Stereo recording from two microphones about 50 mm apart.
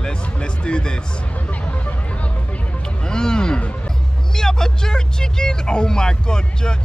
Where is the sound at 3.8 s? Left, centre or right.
Centre.